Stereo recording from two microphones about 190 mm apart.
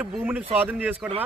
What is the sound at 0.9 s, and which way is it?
Speech, 30° right (ahead or behind).